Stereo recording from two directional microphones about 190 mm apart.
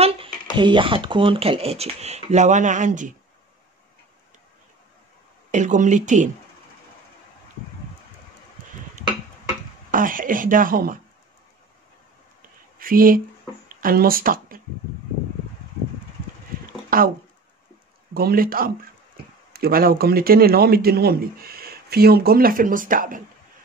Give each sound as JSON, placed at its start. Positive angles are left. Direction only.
{"t": 0.0, "sound": "speech", "side_deg": -25}
{"t": 5.5, "sound": "speech", "side_deg": -40}
{"t": 9.8, "sound": "a man's voice", "side_deg": -45}
{"t": 12.7, "sound": "speech", "side_deg": -50}
{"t": 16.9, "sound": "speech", "side_deg": -50}
{"t": 18.1, "sound": "a man's voice", "side_deg": -50}